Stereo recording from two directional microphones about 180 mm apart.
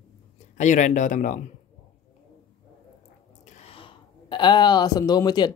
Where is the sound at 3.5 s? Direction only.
35° left (ahead or behind).